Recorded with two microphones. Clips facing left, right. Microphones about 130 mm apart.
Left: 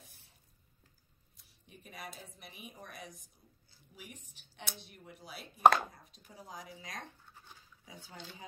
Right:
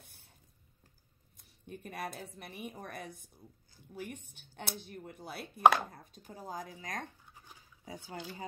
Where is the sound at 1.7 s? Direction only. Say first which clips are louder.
Right 8 dB; 60° right (ahead or behind).